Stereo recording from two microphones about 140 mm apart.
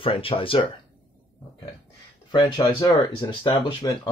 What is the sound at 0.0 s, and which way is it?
Speech, 40° left (ahead or behind).